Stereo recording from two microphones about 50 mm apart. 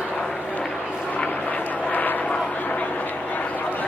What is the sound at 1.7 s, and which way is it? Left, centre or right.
Vehicle, left.